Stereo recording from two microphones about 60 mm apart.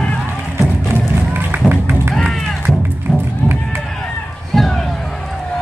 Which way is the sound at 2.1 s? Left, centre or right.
Centre.